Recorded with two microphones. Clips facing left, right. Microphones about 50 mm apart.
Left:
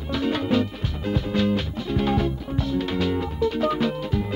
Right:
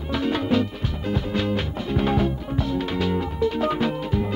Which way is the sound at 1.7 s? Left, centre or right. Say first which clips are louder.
Right 1 dB; right.